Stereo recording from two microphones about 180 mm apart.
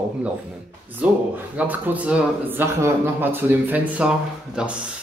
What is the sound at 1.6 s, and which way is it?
Speech, 10° right (ahead or behind).